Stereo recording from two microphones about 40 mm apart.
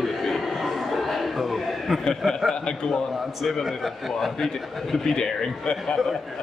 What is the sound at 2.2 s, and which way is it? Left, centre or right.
Speech, centre.